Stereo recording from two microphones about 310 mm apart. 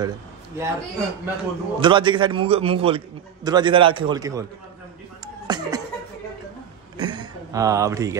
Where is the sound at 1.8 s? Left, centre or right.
Centre.